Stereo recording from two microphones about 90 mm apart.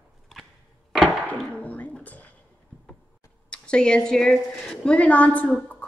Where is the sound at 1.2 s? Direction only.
15° left (ahead or behind).